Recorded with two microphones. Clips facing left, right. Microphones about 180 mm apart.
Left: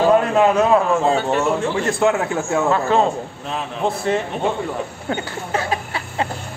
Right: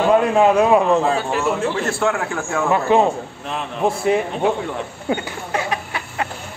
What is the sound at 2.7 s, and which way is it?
Speech, 15° right (ahead or behind).